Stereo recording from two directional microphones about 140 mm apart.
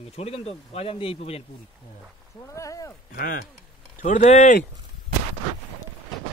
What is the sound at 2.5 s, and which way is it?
Speech, 20° left (ahead or behind).